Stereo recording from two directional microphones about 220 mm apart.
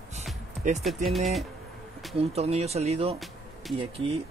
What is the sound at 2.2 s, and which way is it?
Speech, 30° right (ahead or behind).